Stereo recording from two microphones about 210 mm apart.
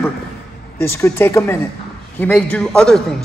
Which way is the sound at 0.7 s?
10° left (ahead or behind).